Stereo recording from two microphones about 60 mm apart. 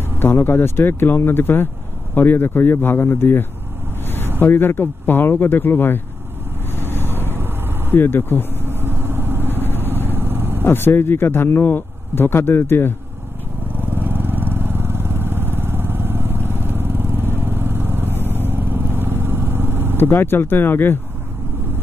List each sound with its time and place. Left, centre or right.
0.0 s speech: left
7.0 s vehicle: right
7.9 s speech: left
8.6 s vehicle: right
10.6 s speech: left
13.7 s vehicle: right
20.0 s speech: left